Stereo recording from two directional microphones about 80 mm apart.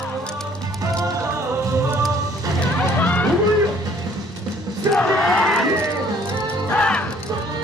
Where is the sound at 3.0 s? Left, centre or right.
Left.